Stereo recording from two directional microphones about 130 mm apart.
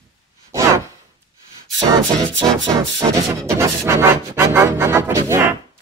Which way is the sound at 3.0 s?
25° right (ahead or behind).